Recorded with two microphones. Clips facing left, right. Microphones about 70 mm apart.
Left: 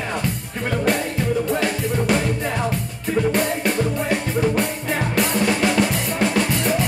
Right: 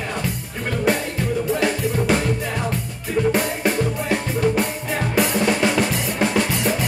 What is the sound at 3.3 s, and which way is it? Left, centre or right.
Music, centre.